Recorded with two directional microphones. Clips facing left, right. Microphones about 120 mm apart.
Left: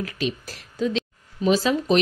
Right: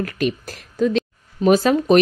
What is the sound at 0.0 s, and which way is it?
Speech, 50° right (ahead or behind).